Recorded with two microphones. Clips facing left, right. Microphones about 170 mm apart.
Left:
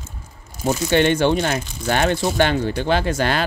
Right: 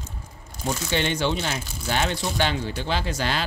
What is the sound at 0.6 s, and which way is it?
Speech, 50° left (ahead or behind).